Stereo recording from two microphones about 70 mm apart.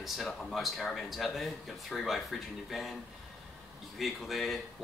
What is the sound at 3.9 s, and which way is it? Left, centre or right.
Speech, centre.